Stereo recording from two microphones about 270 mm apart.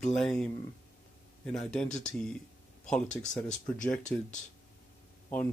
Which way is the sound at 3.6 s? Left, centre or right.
Centre.